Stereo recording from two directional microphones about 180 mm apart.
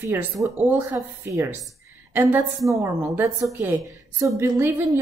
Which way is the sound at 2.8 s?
15° right (ahead or behind).